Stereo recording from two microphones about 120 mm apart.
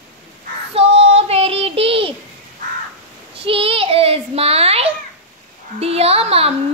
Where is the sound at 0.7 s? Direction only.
60° right (ahead or behind).